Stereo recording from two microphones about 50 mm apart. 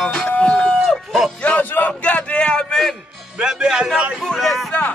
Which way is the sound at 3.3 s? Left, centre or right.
Centre.